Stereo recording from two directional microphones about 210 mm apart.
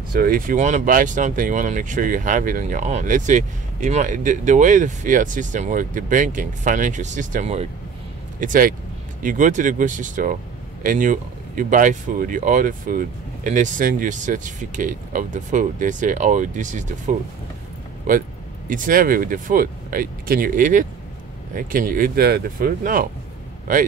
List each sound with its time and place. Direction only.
0.1 s speech: 45° right (ahead or behind)
18.7 s speech: 40° right (ahead or behind)